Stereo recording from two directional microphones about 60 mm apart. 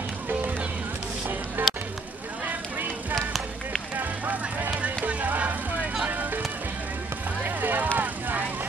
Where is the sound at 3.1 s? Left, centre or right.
Centre.